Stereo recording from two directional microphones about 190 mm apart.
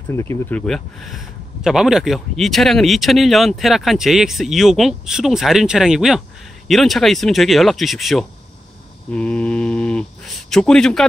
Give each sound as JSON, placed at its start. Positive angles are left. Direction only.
{"t": 0.1, "sound": "speech", "side_deg": 15}